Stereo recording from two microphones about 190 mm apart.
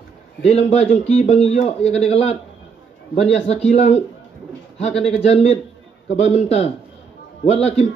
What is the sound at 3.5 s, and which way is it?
Speech, 35° left (ahead or behind).